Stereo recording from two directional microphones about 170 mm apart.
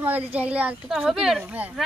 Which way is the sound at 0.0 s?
10° right (ahead or behind).